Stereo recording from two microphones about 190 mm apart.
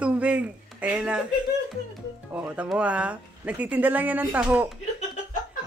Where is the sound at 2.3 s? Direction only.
5° right (ahead or behind).